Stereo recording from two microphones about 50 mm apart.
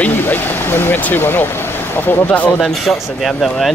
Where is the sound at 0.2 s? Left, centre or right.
Left.